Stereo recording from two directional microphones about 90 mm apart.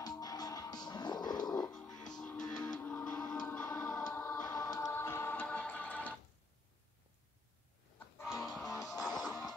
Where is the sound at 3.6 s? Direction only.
30° left (ahead or behind).